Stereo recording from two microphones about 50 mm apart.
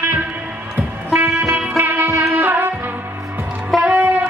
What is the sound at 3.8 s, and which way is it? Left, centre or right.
Music, right.